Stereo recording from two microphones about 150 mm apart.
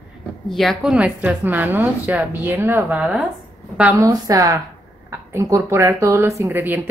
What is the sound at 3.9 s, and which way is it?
A woman's voice, 20° right (ahead or behind).